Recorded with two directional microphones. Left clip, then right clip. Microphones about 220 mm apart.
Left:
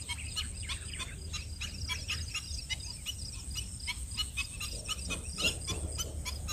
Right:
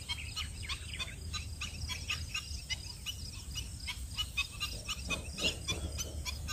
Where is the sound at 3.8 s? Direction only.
30° left (ahead or behind).